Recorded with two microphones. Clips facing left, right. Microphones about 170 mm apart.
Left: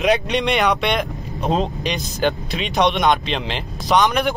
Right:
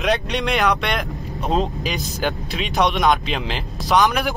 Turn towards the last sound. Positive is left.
turn(degrees=0)  # may be behind; listen again after turning